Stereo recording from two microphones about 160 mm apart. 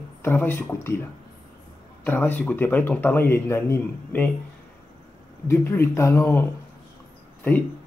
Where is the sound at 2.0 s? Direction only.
10° left (ahead or behind).